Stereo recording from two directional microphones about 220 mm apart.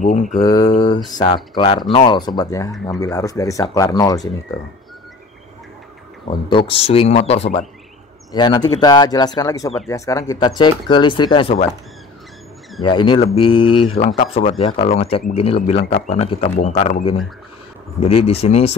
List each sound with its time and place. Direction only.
0.0 s mantra: 35° left (ahead or behind)
0.4 s speech: 15° left (ahead or behind)
2.7 s speech: centre (ahead or behind)
3.0 s speech: 15° left (ahead or behind)
6.5 s speech: 25° left (ahead or behind)
12.8 s speech: 20° left (ahead or behind)